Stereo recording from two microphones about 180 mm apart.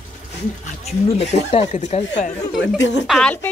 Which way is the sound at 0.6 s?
35° left (ahead or behind).